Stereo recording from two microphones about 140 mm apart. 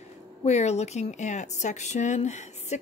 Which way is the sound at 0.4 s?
50° left (ahead or behind).